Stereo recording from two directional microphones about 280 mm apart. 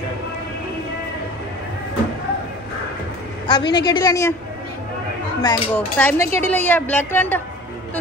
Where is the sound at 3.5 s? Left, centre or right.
Centre.